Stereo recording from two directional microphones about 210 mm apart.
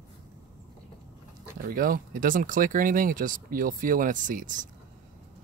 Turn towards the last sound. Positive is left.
turn(degrees=-40)  # may be behind; listen again after turning